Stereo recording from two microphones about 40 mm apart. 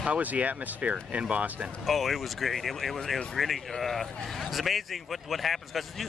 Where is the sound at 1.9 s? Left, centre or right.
Centre.